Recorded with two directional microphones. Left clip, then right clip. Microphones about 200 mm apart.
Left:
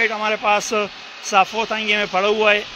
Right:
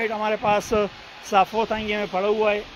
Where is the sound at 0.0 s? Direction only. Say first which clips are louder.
Left 4 dB; 10° right (ahead or behind).